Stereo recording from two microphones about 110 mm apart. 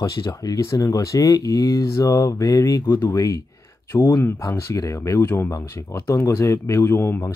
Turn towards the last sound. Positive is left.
turn(degrees=25)  # may be behind; listen again after turning